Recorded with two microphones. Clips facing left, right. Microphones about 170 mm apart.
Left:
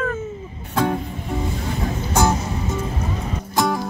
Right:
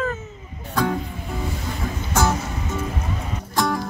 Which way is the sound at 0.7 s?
25° left (ahead or behind).